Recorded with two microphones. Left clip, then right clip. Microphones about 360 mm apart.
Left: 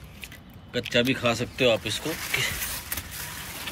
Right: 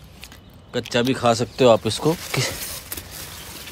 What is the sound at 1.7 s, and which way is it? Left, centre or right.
Speech, right.